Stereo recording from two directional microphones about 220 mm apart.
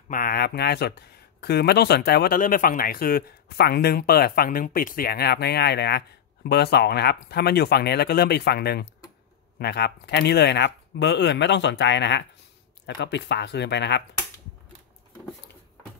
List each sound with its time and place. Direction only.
0.1 s speech: 40° left (ahead or behind)